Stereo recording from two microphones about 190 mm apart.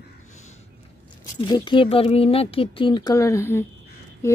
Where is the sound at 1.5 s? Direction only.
25° left (ahead or behind).